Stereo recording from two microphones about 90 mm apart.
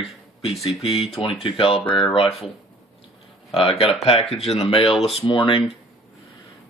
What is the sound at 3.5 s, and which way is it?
Speech, 90° left.